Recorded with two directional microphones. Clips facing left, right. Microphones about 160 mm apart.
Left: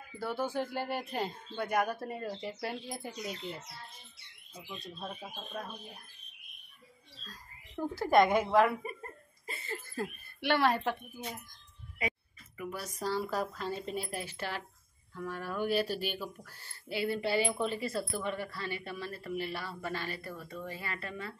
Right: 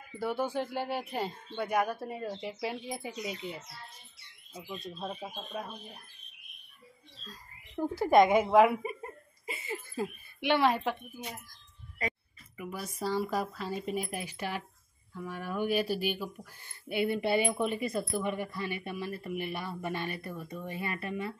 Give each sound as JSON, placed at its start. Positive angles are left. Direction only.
{"t": 0.2, "sound": "speech", "side_deg": 0}
{"t": 4.6, "sound": "speech", "side_deg": -25}
{"t": 7.9, "sound": "speech", "side_deg": -5}
{"t": 8.5, "sound": "chuckle", "side_deg": -10}
{"t": 10.4, "sound": "speech", "side_deg": 0}
{"t": 12.5, "sound": "speech", "side_deg": -10}